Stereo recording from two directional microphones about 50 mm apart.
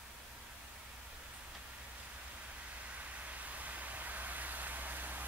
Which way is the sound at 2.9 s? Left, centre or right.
Right.